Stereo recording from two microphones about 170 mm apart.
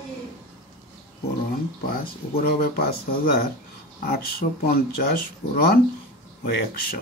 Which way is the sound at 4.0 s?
60° left (ahead or behind).